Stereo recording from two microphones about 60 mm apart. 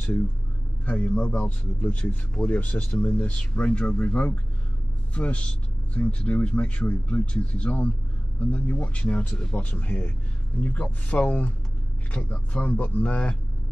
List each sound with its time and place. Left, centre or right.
0.8 s speech: left